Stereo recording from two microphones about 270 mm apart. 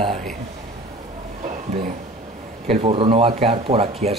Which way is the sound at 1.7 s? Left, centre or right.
Right.